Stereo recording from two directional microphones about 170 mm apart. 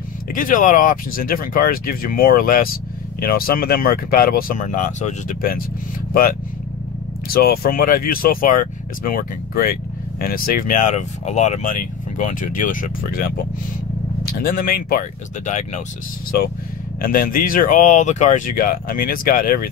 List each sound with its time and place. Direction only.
0.3 s speech: 55° left (ahead or behind)
7.2 s speech: 65° left (ahead or behind)
14.4 s speech: 55° left (ahead or behind)
17.0 s speech: 60° left (ahead or behind)